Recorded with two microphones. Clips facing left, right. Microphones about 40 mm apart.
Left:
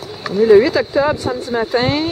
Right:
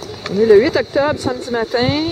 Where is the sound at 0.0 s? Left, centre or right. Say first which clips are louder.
Even; centre.